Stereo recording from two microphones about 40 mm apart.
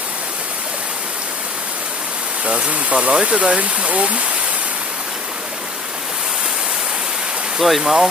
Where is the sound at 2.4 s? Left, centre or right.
Right.